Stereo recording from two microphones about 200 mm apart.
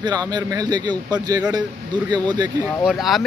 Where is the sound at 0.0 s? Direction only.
20° right (ahead or behind).